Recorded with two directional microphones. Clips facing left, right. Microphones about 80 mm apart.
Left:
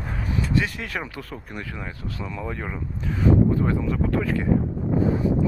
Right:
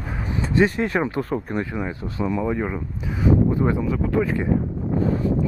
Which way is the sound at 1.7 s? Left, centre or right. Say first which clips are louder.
Right 7 dB; centre.